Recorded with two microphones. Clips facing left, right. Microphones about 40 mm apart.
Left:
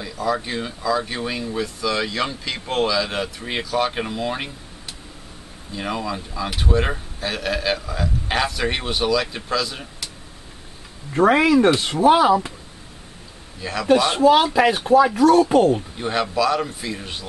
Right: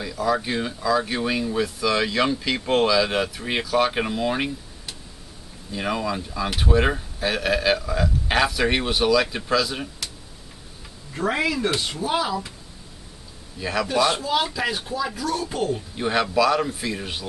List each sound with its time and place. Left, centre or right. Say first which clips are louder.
0.0 s speech: even; centre
11.1 s speech: left 9 dB; left
13.6 s speech: right 2 dB; centre
14.5 s speech: left 11 dB; left
16.0 s speech: right 5 dB; centre